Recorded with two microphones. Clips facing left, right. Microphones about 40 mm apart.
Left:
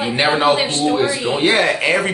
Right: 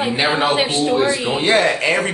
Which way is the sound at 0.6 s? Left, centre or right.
Centre.